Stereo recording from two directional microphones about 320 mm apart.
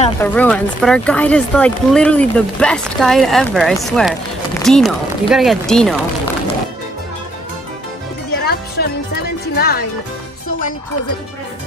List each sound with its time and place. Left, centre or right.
0.2 s speech: centre
8.5 s music: left